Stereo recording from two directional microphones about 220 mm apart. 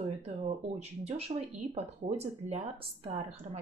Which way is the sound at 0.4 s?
25° right (ahead or behind).